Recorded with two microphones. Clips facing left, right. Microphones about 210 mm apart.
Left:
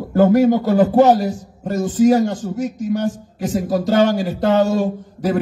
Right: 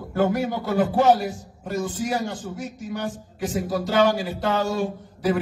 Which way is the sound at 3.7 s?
45° left (ahead or behind).